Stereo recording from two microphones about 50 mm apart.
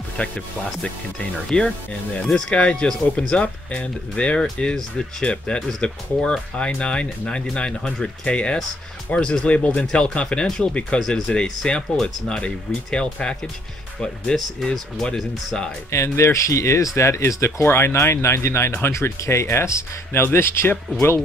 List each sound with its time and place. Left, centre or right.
0.2 s speech: left
1.5 s speech: centre
11.0 s speech: centre
14.3 s speech: centre
14.7 s speech: centre
15.9 s speech: left
17.6 s speech: left